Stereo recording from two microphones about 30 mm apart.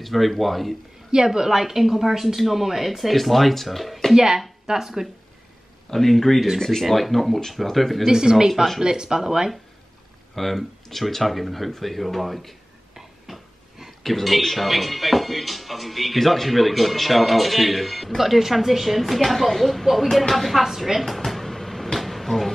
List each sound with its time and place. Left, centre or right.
0.0 s speech: centre
1.1 s speech: right; by 4.1 s centre
4.1 s speech: centre
5.9 s speech: centre
8.1 s speech: right
10.3 s speech: centre
12.9 s a sound: centre
14.0 s speech: centre
21.1 s drawer open or close: centre
21.9 s a sound: centre